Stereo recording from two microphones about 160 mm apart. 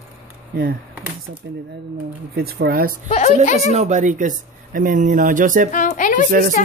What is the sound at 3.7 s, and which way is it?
Speech, 50° right (ahead or behind).